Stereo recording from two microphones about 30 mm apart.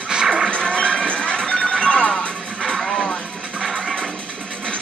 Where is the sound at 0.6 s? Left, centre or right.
Left.